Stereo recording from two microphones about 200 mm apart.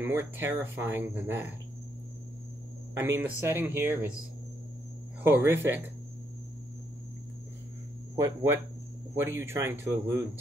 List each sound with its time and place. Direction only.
0.0 s speech: 10° right (ahead or behind)
3.0 s speech: 10° right (ahead or behind)
5.2 s speech: 10° right (ahead or behind)
8.2 s speech: 15° right (ahead or behind)